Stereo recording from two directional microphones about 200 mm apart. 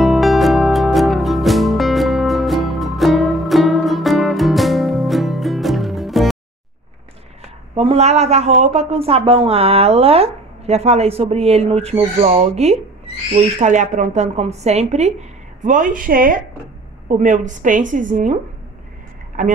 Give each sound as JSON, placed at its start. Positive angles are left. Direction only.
{"t": 0.0, "sound": "music", "side_deg": 0}
{"t": 7.7, "sound": "a woman's voice", "side_deg": -30}